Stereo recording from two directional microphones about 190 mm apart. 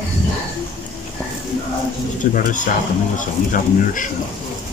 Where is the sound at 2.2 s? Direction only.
45° left (ahead or behind).